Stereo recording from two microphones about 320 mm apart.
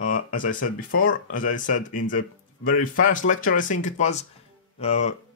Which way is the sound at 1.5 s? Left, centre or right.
Left.